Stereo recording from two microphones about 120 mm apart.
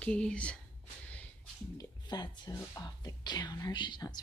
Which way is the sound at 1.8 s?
35° left (ahead or behind).